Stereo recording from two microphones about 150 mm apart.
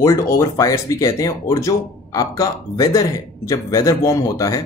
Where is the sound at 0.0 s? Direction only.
20° left (ahead or behind).